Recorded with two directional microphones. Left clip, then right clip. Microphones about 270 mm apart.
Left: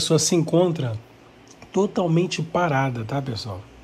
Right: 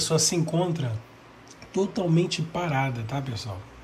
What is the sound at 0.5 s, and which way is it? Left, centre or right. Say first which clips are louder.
Speech: left 8 dB; centre.